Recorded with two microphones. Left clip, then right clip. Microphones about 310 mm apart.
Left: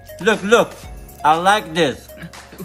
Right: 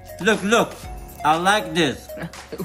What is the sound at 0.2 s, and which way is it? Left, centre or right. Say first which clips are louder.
Speech: left 4 dB; centre.